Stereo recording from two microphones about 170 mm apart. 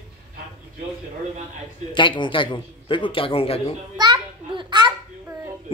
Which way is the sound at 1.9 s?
30° left (ahead or behind).